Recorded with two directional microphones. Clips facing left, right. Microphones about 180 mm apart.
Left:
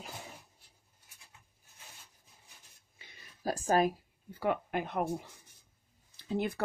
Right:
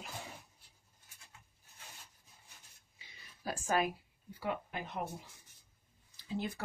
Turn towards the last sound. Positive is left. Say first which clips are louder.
# left 6 dB
turn(degrees=60)  # may be behind; listen again after turning